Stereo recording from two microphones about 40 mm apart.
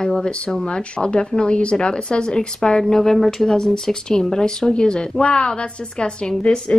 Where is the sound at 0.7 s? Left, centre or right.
Left.